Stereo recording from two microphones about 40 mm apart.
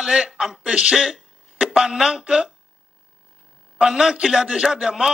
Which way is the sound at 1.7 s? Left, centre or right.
Centre.